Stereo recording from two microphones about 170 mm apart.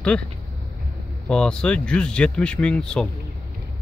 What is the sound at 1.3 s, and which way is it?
Speech, 5° left (ahead or behind).